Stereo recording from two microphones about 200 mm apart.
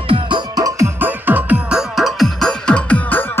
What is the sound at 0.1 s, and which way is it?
Music, 20° right (ahead or behind).